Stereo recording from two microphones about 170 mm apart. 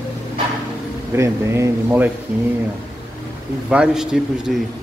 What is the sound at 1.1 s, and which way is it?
Speech, 15° right (ahead or behind).